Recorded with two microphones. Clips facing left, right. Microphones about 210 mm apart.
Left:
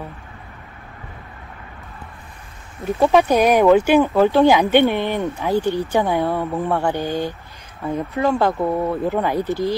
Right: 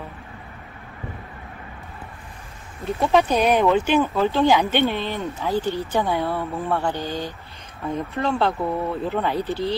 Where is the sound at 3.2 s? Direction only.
10° left (ahead or behind).